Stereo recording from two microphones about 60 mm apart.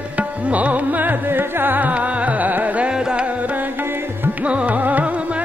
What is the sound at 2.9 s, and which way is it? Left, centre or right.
Music, centre.